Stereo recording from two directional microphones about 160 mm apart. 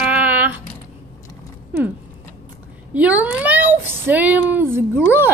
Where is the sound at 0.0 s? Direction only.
10° right (ahead or behind).